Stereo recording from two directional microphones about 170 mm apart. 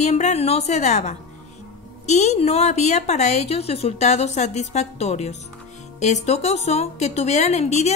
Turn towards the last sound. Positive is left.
turn(degrees=40)  # may be behind; listen again after turning